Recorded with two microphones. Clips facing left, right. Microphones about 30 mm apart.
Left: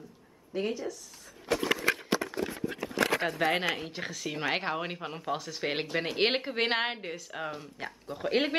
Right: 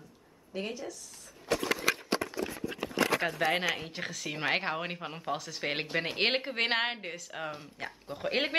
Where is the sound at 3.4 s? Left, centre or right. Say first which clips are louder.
Left 2 dB; left.